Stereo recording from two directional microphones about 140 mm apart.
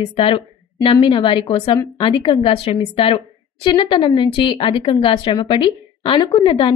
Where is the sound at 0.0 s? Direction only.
40° left (ahead or behind).